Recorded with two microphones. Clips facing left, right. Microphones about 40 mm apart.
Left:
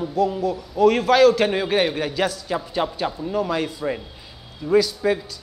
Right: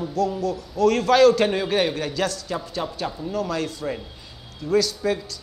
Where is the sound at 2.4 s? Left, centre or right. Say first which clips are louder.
Left 4 dB; left.